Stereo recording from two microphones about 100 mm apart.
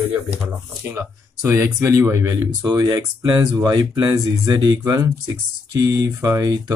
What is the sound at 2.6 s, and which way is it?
Speech, 40° right (ahead or behind).